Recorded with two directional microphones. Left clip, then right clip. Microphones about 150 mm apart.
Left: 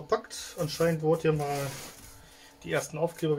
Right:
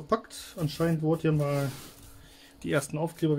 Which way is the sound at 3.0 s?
90° right.